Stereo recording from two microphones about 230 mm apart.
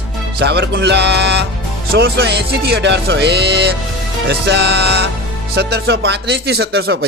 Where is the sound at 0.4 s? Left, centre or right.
Right.